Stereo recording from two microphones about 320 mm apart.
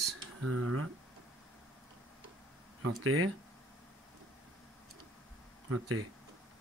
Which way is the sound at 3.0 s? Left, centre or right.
Right.